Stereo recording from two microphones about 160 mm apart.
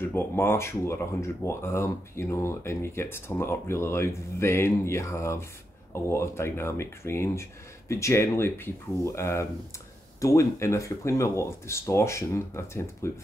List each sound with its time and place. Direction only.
0.0 s speech: 15° left (ahead or behind)